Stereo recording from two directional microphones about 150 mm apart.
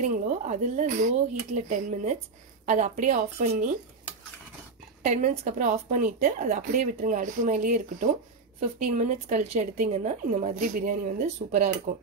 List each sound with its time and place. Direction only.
0.0 s speech: 55° right (ahead or behind)
5.0 s a woman's voice: 55° right (ahead or behind)
5.7 s a woman's voice: 65° right (ahead or behind)